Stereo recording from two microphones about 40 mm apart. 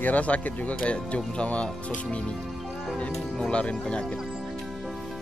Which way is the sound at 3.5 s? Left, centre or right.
Left.